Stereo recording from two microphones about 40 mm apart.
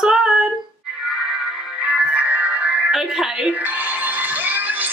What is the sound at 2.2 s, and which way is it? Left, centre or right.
Music, right.